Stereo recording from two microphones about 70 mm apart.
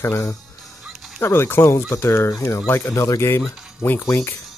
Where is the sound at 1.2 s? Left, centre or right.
Left.